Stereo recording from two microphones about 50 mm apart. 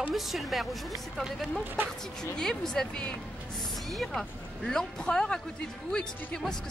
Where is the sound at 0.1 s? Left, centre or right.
Centre.